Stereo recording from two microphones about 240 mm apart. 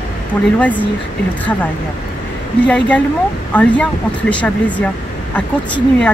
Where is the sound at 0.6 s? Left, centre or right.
Centre.